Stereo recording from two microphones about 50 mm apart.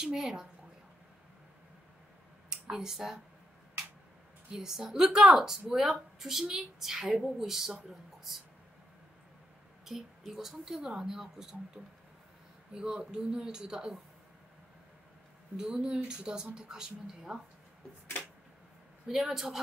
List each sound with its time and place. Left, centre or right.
0.0 s speech: centre
2.7 s speech: centre
4.5 s speech: centre
9.8 s speech: centre
15.5 s speech: centre
19.0 s a woman's voice: centre